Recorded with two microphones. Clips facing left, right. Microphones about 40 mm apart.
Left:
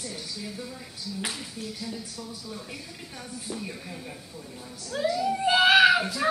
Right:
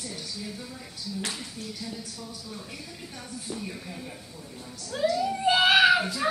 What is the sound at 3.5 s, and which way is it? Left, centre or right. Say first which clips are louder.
A woman's voice: even; centre.